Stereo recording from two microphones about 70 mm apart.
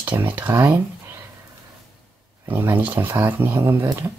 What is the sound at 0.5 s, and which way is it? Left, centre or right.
Speech, right.